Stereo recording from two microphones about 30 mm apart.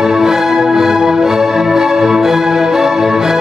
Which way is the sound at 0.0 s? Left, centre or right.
Centre.